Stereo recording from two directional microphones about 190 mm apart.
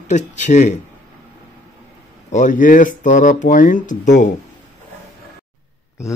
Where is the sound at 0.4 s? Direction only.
40° left (ahead or behind).